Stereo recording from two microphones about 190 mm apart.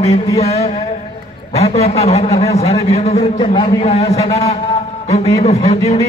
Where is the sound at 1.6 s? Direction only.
35° left (ahead or behind).